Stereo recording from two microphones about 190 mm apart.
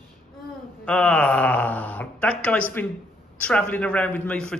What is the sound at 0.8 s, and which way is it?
A man's voice, 5° left (ahead or behind).